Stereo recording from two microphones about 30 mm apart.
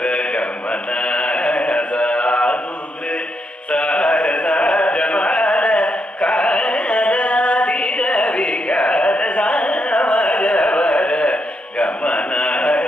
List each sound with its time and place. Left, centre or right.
0.0 s mantra: left
3.7 s carnatic music: left
11.8 s mantra: left